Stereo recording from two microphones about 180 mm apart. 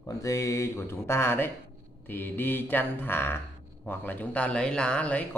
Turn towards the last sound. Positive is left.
turn(degrees=5)  # may be behind; listen again after turning